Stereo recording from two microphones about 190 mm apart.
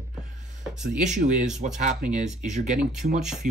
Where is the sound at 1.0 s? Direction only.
40° right (ahead or behind).